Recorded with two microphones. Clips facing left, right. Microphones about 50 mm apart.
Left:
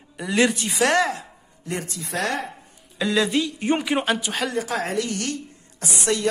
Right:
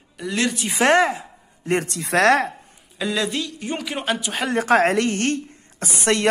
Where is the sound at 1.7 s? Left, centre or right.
Right.